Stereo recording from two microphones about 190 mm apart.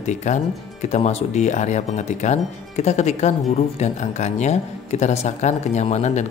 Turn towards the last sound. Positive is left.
turn(degrees=35)  # may be behind; listen again after turning